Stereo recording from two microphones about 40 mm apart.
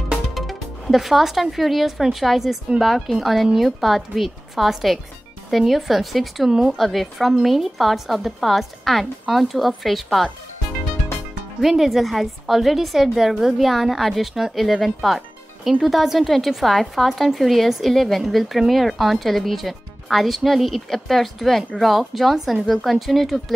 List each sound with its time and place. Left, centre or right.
0.3 s speech: centre
11.6 s speech: centre